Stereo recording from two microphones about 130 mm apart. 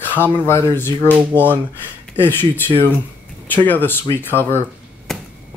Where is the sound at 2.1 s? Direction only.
15° left (ahead or behind).